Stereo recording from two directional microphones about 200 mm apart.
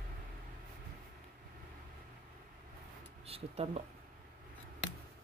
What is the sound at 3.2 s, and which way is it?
Speech, 30° right (ahead or behind).